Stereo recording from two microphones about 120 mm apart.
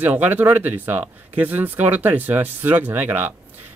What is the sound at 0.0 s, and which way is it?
Speech, 15° right (ahead or behind).